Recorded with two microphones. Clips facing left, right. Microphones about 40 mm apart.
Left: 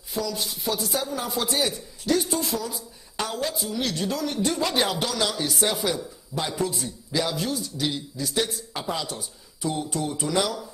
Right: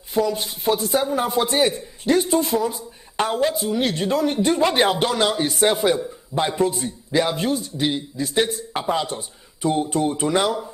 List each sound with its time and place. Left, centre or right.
0.1 s a man's voice: right